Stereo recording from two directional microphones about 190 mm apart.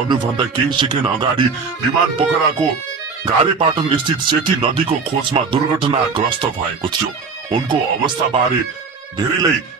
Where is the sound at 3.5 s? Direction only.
25° right (ahead or behind).